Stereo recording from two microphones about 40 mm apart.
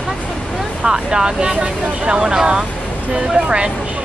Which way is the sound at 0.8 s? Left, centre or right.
Centre.